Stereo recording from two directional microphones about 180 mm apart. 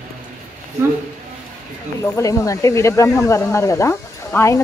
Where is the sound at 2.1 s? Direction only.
15° left (ahead or behind).